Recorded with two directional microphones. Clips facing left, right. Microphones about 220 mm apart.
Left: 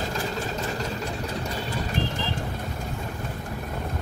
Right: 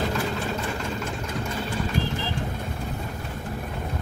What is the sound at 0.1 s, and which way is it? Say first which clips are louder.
Vehicle: right 2 dB; 40° left (ahead or behind).